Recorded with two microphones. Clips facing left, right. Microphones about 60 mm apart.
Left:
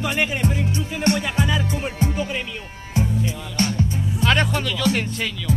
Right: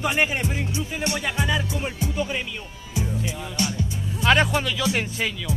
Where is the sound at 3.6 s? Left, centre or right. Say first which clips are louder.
Left 5 dB; left.